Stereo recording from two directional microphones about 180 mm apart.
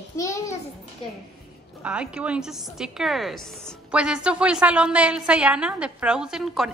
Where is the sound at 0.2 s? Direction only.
15° left (ahead or behind).